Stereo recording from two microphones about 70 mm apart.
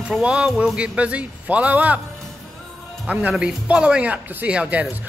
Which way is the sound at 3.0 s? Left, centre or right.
Centre.